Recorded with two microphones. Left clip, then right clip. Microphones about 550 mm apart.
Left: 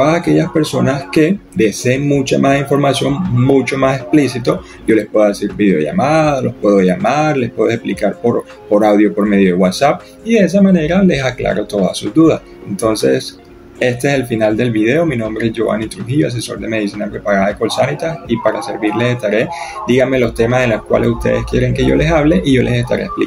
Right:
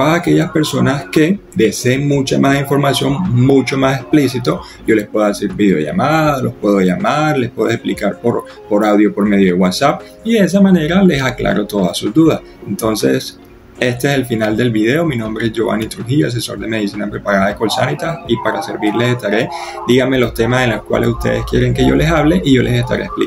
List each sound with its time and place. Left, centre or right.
0.0 s speech: right